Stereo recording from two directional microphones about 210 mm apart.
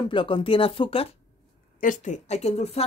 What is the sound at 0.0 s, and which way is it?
Speech, 25° left (ahead or behind).